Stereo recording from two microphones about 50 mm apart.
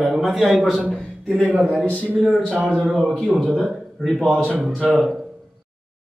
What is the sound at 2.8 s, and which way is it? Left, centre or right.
Speech, centre.